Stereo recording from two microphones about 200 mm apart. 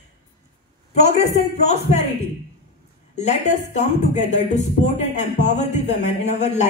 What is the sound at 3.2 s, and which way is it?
Speech, 35° left (ahead or behind).